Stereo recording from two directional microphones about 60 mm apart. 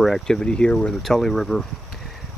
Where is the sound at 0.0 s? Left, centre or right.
Centre.